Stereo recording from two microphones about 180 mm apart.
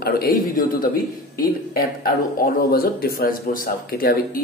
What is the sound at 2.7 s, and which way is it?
Speech, 55° left (ahead or behind).